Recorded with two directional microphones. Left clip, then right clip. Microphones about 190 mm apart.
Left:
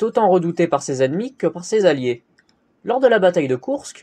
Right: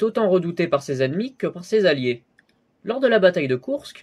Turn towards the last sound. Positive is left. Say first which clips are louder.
# left 1 dB
turn(degrees=15)  # may be behind; listen again after turning